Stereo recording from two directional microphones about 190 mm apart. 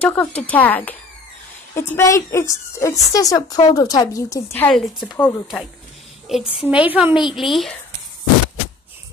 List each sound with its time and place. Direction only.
0.0 s a woman's voice: 10° left (ahead or behind)
6.5 s a woman's voice: 5° right (ahead or behind)